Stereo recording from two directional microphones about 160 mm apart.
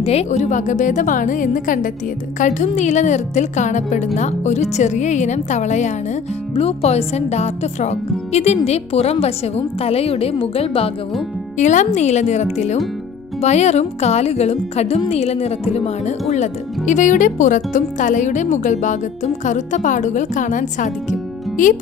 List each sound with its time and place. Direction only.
0.0 s speech: 40° left (ahead or behind)
11.5 s speech: 50° left (ahead or behind)